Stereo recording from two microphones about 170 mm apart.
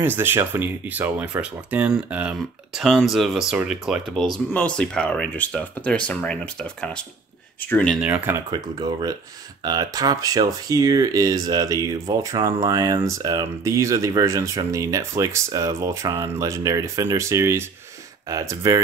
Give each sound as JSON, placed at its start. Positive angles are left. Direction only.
{"t": 0.0, "sound": "speech", "side_deg": -10}
{"t": 8.0, "sound": "speech", "side_deg": -10}
{"t": 8.5, "sound": "speech", "side_deg": -25}